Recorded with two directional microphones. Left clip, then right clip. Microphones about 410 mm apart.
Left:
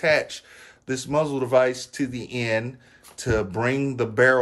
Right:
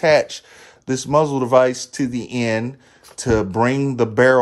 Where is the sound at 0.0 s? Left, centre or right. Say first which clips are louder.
Right 6 dB; centre.